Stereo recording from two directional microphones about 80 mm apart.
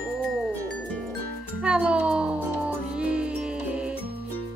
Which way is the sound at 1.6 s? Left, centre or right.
Centre.